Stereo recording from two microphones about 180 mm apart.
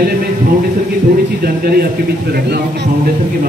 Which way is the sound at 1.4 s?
55° right (ahead or behind).